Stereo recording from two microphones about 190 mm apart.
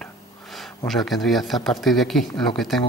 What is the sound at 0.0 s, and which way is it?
Speech, centre (ahead or behind).